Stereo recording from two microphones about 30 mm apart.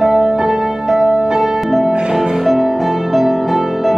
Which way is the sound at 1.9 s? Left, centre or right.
Right.